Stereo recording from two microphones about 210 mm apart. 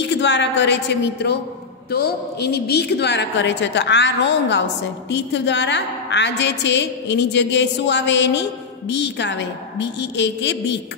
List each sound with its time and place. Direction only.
0.0 s a woman's voice: 55° left (ahead or behind)